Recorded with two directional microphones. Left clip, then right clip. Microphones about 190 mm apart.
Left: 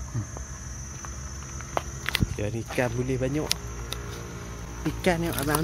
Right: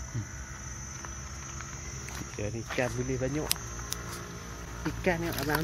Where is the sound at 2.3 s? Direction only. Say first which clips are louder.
Left 4 dB; 15° left (ahead or behind).